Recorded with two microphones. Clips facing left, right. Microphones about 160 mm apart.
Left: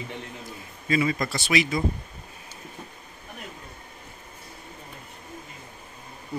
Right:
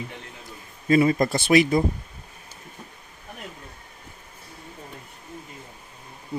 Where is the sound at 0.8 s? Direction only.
45° right (ahead or behind).